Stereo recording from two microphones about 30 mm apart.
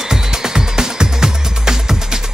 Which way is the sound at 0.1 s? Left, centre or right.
Centre.